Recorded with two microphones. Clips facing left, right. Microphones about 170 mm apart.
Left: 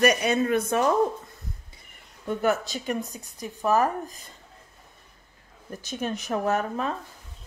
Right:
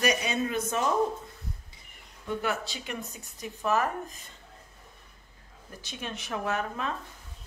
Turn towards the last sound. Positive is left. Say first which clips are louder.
# left 5 dB
turn(degrees=40)  # may be behind; listen again after turning